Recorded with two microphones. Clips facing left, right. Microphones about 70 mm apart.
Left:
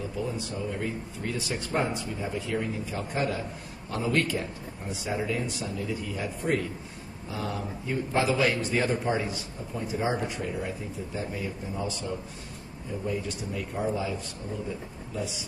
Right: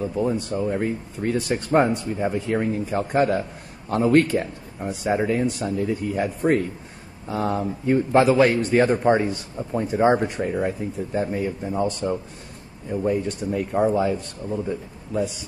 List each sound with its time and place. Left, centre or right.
0.2 s a man's voice: right